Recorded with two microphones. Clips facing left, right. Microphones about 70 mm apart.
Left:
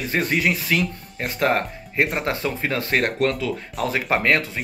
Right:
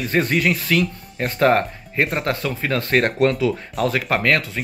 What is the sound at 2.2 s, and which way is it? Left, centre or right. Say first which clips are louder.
Speech: right 1 dB; centre.